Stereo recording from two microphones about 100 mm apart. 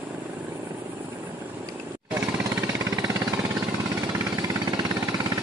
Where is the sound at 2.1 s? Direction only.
30° right (ahead or behind).